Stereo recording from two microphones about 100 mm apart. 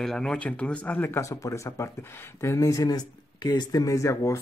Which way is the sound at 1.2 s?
35° left (ahead or behind).